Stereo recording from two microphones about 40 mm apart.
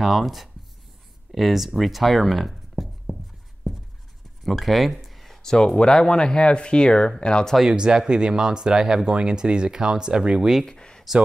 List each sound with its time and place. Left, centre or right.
0.0 s speech: centre
3.7 s writing: centre
4.4 s a sound: centre
5.4 s speech: centre
7.6 s speech: centre
10.6 s speech: centre